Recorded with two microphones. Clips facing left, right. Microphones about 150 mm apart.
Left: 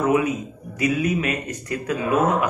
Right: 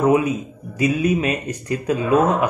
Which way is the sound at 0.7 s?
25° right (ahead or behind).